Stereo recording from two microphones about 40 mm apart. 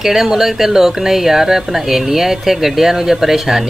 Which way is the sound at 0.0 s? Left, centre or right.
Centre.